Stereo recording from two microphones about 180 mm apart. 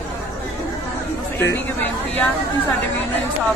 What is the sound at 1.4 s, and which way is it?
Speech, 10° left (ahead or behind).